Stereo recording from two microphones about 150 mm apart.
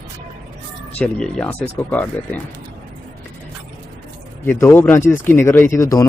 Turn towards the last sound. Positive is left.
turn(degrees=20)  # may be behind; listen again after turning